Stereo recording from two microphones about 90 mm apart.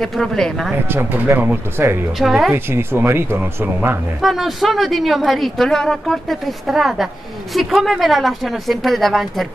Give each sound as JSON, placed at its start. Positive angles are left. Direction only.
{"t": 0.0, "sound": "speech", "side_deg": 5}
{"t": 0.8, "sound": "speech", "side_deg": -25}
{"t": 2.1, "sound": "speech", "side_deg": 0}
{"t": 2.5, "sound": "speech", "side_deg": -25}
{"t": 4.2, "sound": "speech", "side_deg": 0}